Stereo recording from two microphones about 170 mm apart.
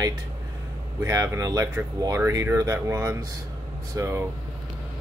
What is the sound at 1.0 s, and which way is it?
Speech, 15° right (ahead or behind).